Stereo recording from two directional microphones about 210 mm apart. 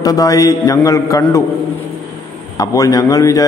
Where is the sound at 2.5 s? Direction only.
15° left (ahead or behind).